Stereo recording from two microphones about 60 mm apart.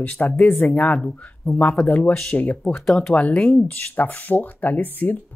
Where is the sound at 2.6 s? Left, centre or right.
Centre.